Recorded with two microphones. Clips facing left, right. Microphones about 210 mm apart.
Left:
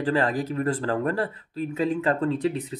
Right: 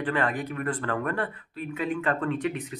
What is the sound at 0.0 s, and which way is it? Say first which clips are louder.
Speech: left 4 dB; 30° left (ahead or behind).